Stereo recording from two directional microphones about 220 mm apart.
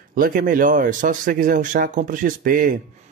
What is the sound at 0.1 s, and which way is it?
Speech, 40° right (ahead or behind).